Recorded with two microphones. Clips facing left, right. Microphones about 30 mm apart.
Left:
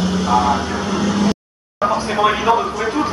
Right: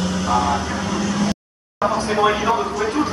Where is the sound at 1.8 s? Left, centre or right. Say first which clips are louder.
Left 1 dB; centre.